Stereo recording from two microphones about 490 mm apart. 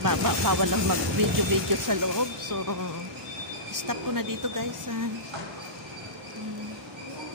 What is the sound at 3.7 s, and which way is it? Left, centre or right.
Speech, right.